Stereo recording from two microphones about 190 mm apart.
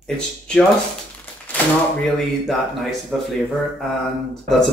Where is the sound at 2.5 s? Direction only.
Centre (ahead or behind).